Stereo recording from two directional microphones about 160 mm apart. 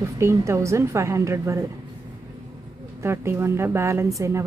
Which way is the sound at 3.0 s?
15° right (ahead or behind).